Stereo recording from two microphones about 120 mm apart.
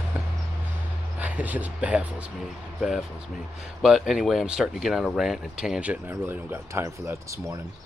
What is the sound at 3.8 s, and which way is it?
Speech, 5° right (ahead or behind).